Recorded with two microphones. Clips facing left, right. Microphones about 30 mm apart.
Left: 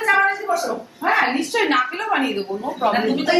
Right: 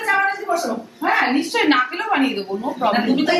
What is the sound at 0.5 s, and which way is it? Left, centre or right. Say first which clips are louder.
Dog: even; centre.